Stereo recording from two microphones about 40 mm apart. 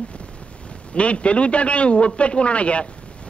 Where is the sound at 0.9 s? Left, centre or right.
Left.